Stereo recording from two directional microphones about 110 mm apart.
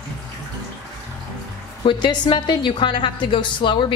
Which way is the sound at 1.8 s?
45° left (ahead or behind).